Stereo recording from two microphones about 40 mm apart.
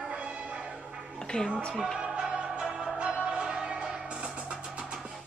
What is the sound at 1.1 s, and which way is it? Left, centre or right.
Music, centre.